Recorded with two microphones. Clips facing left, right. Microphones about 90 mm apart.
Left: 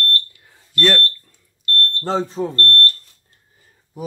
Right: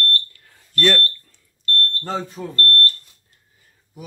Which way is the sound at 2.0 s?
25° left (ahead or behind).